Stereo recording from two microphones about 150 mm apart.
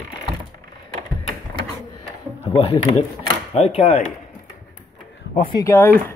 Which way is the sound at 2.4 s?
40° left (ahead or behind).